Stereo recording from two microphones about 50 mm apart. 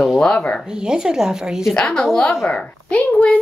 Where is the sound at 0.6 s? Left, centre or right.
Centre.